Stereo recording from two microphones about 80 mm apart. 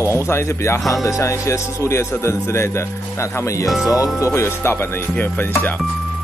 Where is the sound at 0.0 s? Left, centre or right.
Left.